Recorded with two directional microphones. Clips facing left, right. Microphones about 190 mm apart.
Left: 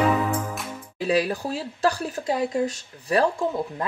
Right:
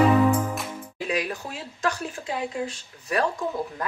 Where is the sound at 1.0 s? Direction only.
35° left (ahead or behind).